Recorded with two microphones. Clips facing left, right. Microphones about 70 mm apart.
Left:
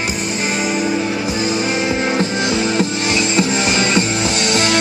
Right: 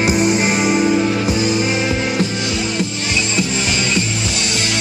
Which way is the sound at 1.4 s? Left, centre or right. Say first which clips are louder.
Right 1 dB; left.